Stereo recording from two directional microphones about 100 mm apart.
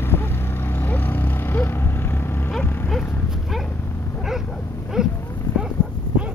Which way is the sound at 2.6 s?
20° left (ahead or behind).